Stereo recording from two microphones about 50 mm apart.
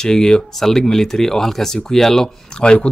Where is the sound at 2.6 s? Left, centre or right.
Centre.